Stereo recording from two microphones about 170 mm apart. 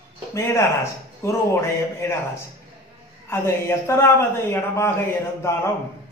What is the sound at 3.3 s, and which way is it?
Speech, 15° left (ahead or behind).